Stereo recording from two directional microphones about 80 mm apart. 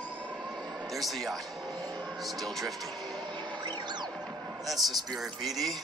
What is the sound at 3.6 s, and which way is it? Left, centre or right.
Music, right.